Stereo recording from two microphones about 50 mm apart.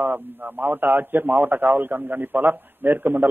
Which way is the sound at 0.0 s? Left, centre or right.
Right.